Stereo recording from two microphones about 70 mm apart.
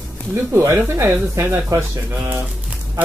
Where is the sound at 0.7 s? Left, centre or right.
Right.